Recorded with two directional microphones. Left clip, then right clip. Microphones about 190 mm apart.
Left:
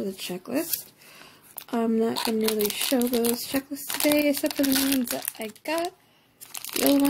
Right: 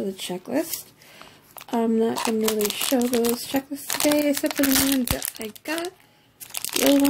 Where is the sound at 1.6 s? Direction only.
10° left (ahead or behind).